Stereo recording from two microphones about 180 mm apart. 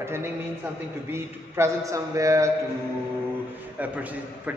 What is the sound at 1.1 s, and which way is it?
A man's voice, 15° right (ahead or behind).